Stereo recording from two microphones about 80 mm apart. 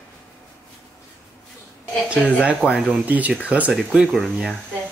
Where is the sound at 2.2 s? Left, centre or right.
Left.